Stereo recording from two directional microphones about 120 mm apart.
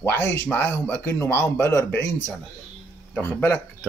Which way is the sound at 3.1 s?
15° left (ahead or behind).